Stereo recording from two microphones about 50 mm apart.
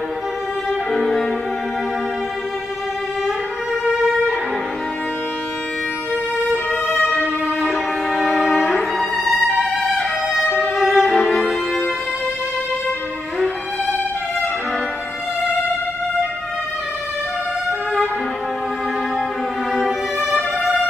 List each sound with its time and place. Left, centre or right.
0.9 s music: centre
6.7 s violin: left
7.6 s music: centre
8.5 s violin: centre
9.5 s music: centre